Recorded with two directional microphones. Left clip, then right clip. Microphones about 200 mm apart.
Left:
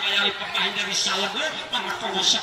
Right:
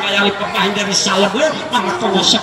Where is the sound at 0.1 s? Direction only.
20° right (ahead or behind).